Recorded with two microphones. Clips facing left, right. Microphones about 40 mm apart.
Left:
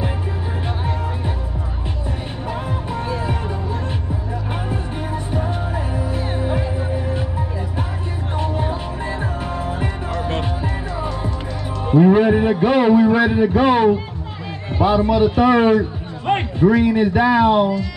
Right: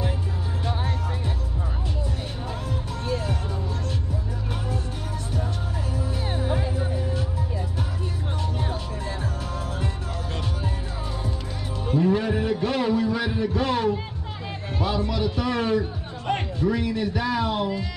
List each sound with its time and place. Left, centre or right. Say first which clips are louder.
2.9 s music: left 4 dB; left
4.6 s music: left 6 dB; left
11.9 s a man's voice: left 9 dB; left